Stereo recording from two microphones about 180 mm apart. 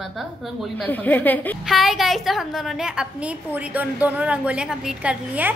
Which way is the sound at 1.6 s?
Centre (ahead or behind).